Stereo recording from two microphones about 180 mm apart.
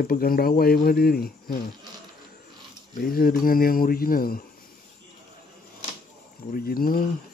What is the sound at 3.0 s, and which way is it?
Speech, 55° left (ahead or behind).